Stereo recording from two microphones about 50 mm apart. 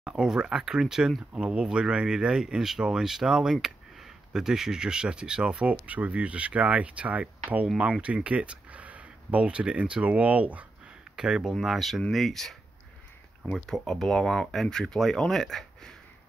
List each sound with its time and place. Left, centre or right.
0.0 s speech: centre
7.6 s speech: centre
11.1 s speech: centre